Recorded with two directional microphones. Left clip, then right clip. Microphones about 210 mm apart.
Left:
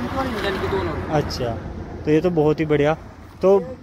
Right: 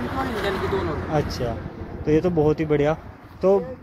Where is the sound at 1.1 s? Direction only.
5° left (ahead or behind).